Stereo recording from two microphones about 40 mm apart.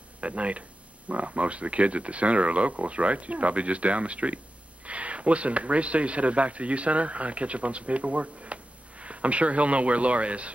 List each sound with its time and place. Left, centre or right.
0.2 s speech: right